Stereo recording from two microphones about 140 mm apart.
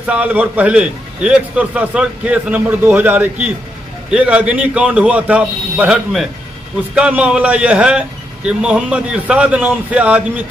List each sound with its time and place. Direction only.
0.0 s a man's voice: 10° right (ahead or behind)